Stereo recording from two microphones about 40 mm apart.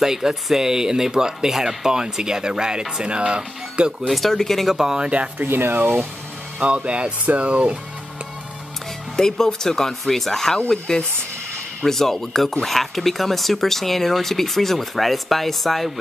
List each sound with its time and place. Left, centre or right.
0.0 s speech: centre
4.1 s speech: centre
4.7 s speech: centre
5.4 s speech: right
6.6 s speech: right
9.1 s speech: centre